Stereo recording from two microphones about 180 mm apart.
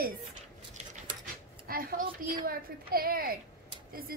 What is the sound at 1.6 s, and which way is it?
A child's voice, 55° right (ahead or behind).